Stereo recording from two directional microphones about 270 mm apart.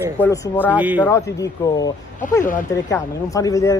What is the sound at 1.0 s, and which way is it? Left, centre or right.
Speech, centre.